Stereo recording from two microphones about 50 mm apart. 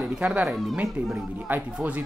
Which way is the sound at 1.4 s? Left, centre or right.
Right.